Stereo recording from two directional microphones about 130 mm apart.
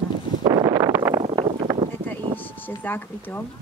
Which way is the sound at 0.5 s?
30° right (ahead or behind).